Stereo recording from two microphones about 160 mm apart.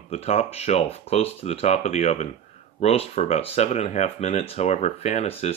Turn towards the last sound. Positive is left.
turn(degrees=45)  # may be behind; listen again after turning